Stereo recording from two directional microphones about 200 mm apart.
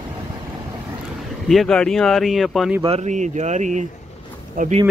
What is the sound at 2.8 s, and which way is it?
Speech, 30° right (ahead or behind).